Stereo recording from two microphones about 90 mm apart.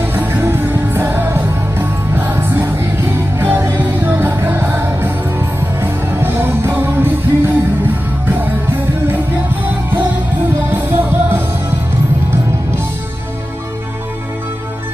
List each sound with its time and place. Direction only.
0.0 s music: 20° right (ahead or behind)